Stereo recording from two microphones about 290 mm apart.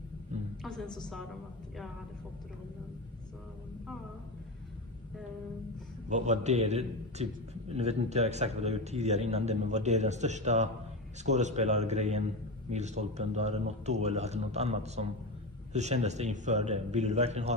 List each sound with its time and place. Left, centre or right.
6.0 s a man's voice: right